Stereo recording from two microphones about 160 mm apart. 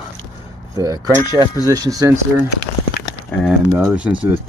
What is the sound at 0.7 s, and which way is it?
Speech, 20° right (ahead or behind).